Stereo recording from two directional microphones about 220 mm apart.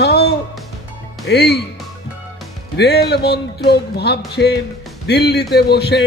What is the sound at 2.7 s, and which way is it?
A man's voice, 50° left (ahead or behind).